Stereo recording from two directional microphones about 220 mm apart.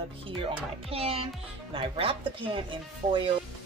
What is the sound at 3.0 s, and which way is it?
Stir, 35° right (ahead or behind).